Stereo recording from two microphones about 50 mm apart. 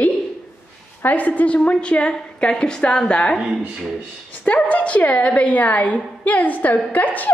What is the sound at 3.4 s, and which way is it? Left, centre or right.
Speech, centre.